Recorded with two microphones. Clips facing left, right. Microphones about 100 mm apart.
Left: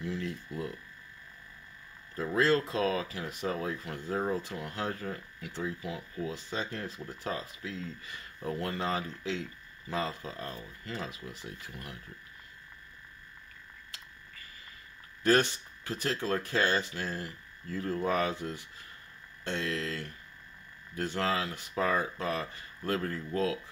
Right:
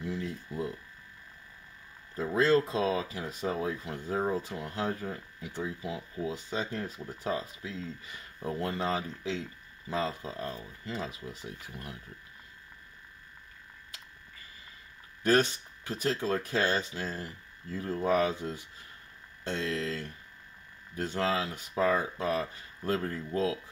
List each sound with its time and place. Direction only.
0.2 s a sound: 20° right (ahead or behind)
2.1 s speech: 20° right (ahead or behind)
15.8 s speech: 20° right (ahead or behind)